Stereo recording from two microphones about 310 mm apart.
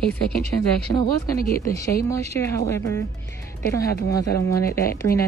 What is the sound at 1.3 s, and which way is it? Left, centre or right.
Speech, left.